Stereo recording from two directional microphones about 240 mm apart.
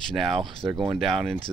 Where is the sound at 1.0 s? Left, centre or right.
Centre.